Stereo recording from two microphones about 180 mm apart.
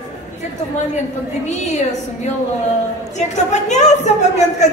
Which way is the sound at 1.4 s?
40° left (ahead or behind).